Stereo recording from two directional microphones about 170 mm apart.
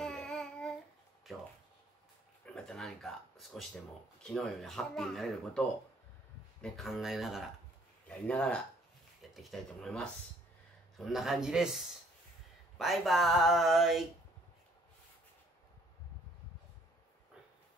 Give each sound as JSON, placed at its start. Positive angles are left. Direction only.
{"t": 0.0, "sound": "babbling", "side_deg": 0}
{"t": 2.4, "sound": "speech", "side_deg": 5}